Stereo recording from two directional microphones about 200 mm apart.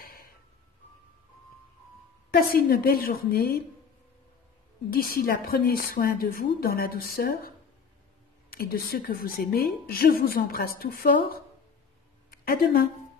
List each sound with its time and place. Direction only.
0.0 s music: 45° left (ahead or behind)
2.3 s a woman's voice: 50° left (ahead or behind)
4.9 s a woman's voice: 45° left (ahead or behind)